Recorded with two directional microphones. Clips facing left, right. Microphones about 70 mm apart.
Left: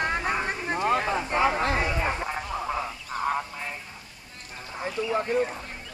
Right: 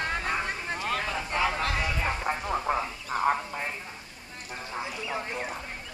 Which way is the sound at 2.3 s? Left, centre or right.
Right.